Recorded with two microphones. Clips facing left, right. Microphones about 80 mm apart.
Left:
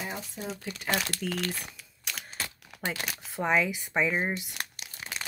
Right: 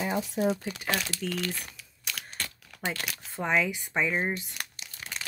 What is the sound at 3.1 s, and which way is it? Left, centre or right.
Speech, centre.